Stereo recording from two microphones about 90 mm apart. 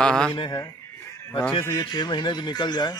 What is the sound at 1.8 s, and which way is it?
Speech, 55° left (ahead or behind).